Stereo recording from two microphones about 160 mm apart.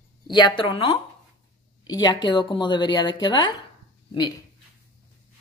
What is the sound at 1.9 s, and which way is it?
A woman's voice, 25° left (ahead or behind).